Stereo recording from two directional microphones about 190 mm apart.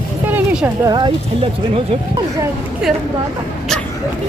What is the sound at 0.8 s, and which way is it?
Speech, 25° right (ahead or behind).